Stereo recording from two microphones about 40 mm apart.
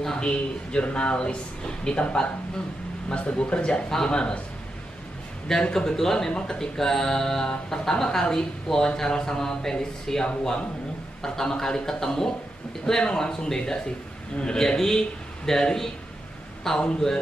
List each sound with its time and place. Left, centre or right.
0.0 s speech: centre
3.1 s speech: left
5.5 s speech: centre